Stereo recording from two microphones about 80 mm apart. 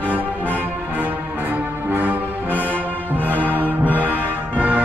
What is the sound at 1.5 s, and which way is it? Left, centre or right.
Music, right.